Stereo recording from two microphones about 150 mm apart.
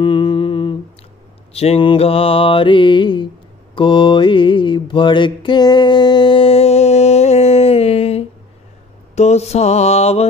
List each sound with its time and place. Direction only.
0.0 s humming: 30° left (ahead or behind)
1.5 s mantra: 40° left (ahead or behind)